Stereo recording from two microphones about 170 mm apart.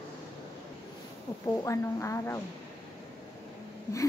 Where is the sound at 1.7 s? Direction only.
15° left (ahead or behind).